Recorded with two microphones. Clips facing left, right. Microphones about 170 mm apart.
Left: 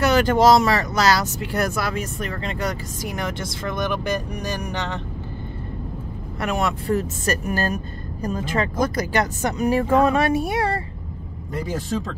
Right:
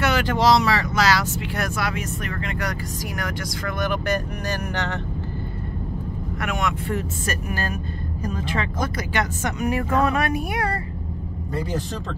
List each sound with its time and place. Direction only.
0.0 s speech: 40° left (ahead or behind); by 4.9 s 15° left (ahead or behind)
6.4 s speech: 35° left (ahead or behind)